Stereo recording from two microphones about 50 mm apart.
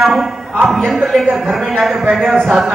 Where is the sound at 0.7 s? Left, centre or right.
Centre.